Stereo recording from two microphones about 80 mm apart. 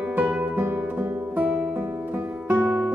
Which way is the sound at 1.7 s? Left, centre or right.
Right.